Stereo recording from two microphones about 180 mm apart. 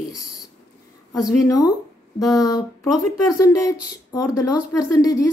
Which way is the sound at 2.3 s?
20° left (ahead or behind).